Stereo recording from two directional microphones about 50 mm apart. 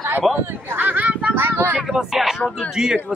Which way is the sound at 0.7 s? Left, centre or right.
Right.